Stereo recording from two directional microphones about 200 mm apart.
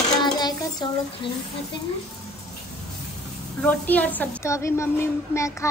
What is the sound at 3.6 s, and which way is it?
A woman's voice, 10° left (ahead or behind).